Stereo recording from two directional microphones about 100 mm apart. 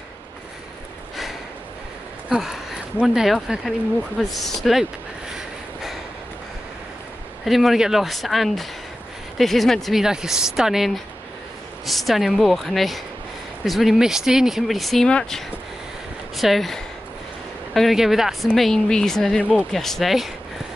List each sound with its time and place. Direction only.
2.2 s speech: 5° right (ahead or behind)
7.4 s speech: centre (ahead or behind)